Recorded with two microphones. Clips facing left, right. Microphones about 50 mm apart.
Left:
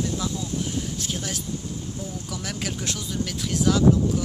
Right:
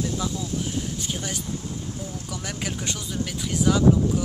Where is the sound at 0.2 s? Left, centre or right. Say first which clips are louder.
Even; centre.